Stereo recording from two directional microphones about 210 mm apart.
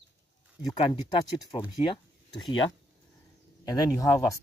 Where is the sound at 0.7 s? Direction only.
25° left (ahead or behind).